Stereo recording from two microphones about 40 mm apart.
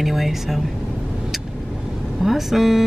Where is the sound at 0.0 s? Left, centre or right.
Centre.